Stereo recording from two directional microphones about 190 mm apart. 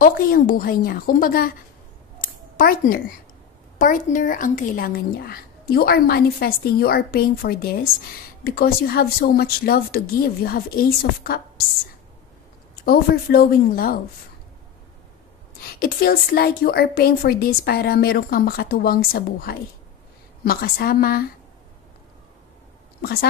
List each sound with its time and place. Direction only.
0.0 s a woman's voice: 50° left (ahead or behind)
2.2 s a sound: 45° left (ahead or behind)
3.7 s a woman's voice: 45° left (ahead or behind)
12.8 s a woman's voice: 55° left (ahead or behind)
15.7 s a woman's voice: 50° left (ahead or behind)